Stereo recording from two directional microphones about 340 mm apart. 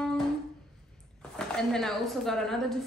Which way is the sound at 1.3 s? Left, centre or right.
Centre.